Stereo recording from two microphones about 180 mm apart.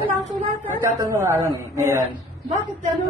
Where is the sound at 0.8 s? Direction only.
15° right (ahead or behind).